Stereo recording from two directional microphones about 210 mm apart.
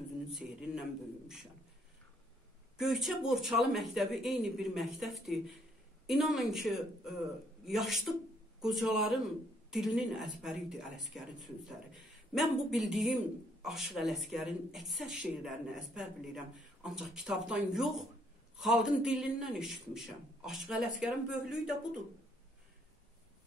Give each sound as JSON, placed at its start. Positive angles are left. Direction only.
{"t": 0.3, "sound": "speech", "side_deg": 0}
{"t": 2.8, "sound": "speech", "side_deg": 0}